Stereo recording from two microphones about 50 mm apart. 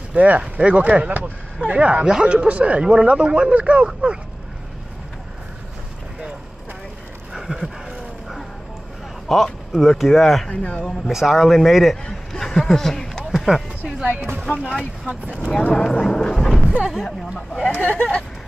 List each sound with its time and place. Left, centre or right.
0.1 s speech: right
7.3 s a sound: centre
9.3 s a man's voice: centre
10.5 s speech: left
11.1 s a man's voice: centre
13.3 s a sound: centre
13.8 s a sound: centre
15.3 s a man's voice: centre
17.7 s speech: left